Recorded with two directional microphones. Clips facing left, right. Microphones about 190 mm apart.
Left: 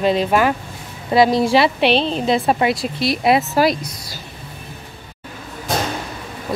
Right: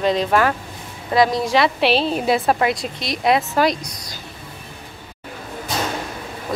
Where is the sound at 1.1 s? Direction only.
25° left (ahead or behind).